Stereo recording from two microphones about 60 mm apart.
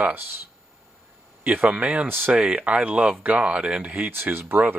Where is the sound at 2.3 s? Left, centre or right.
Centre.